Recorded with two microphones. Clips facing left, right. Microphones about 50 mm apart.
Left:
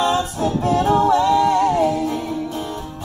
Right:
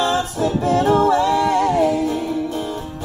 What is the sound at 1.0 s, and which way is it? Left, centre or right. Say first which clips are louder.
Music: left 1 dB; right.